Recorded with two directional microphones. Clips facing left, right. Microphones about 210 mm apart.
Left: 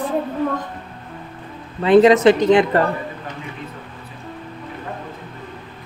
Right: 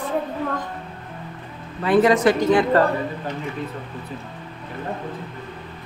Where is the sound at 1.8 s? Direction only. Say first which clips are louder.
Left 5 dB; 20° left (ahead or behind).